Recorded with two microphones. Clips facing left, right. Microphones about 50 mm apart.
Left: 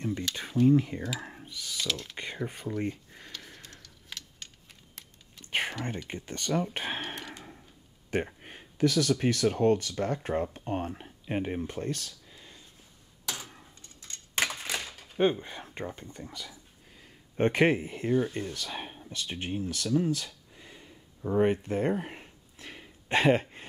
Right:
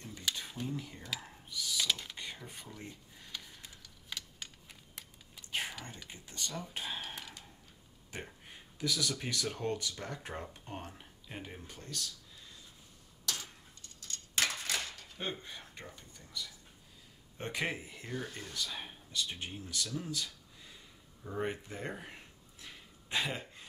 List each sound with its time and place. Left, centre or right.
0.3 s a sound: centre
0.7 s speech: left
1.5 s typing: left
1.8 s speech: centre
2.1 s speech: left
3.8 s a sound: centre
5.0 s typing: centre
5.5 s whispering: left
6.0 s speech: left
8.1 s a sound: left
9.1 s speech: left
13.2 s a sound: left
15.1 s speech: left